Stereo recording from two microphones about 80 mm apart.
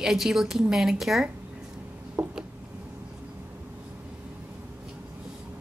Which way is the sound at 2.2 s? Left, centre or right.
Right.